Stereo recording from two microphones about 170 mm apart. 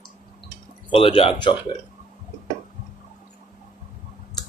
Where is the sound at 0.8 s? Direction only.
30° left (ahead or behind).